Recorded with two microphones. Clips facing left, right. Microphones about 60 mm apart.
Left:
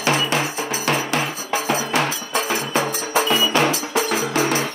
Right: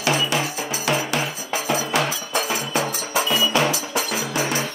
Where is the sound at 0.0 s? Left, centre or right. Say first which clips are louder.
Left 2 dB; left.